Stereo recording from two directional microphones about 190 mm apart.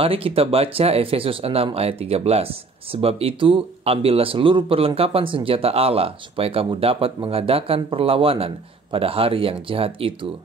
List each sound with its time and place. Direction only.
0.0 s speech: 30° right (ahead or behind)